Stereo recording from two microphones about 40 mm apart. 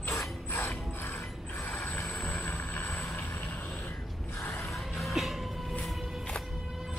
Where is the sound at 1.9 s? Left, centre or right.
Left.